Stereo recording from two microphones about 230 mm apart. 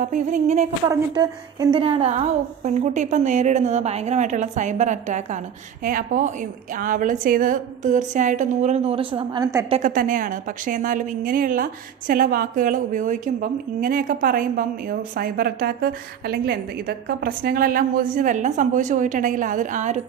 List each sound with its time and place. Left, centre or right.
0.0 s a woman's voice: right
0.8 s a woman's voice: centre
9.7 s a woman's voice: right